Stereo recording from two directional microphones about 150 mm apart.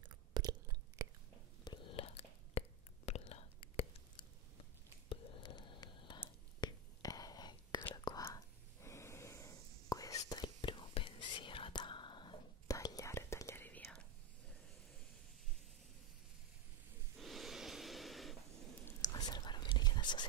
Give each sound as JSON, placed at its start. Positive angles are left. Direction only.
{"t": 0.0, "sound": "chewing", "side_deg": -30}
{"t": 1.6, "sound": "whispering", "side_deg": 30}
{"t": 17.2, "sound": "snort", "side_deg": 0}
{"t": 18.9, "sound": "whispering", "side_deg": 25}